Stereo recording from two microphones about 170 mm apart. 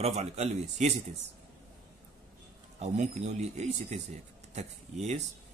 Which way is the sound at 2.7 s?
45° right (ahead or behind).